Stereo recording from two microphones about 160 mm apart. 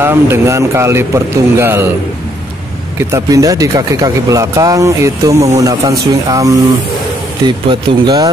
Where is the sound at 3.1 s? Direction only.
20° right (ahead or behind).